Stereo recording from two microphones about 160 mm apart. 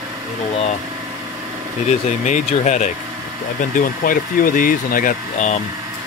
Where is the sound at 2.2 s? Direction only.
50° left (ahead or behind).